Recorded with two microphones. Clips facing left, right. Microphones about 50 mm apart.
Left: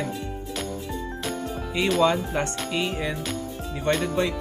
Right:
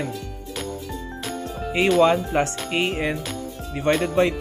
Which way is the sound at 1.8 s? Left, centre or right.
Centre.